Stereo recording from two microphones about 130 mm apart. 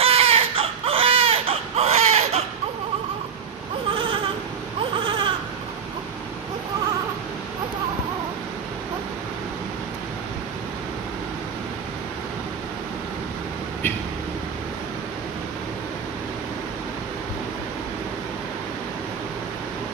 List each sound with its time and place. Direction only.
0.0 s baby cry: 50° right (ahead or behind)
3.9 s baby cry: 40° right (ahead or behind)